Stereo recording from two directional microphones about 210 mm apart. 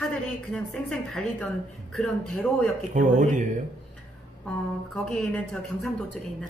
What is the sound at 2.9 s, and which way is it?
Speech, 35° right (ahead or behind).